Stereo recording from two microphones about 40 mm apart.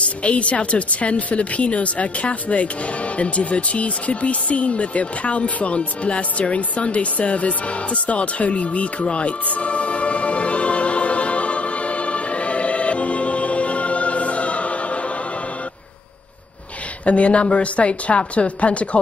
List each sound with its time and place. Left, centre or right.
0.2 s speech: left
3.2 s a sound: left
17.0 s speech: left